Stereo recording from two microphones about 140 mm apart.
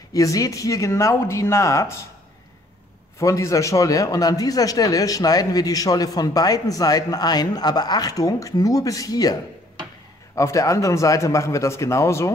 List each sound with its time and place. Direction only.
0.1 s a man's voice: 25° left (ahead or behind)
3.2 s a man's voice: 20° left (ahead or behind)